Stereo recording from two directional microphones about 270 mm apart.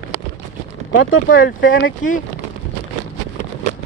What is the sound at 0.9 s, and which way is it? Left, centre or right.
Speech, left.